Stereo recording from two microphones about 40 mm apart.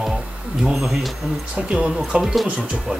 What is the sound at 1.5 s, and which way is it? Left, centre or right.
Speech, right.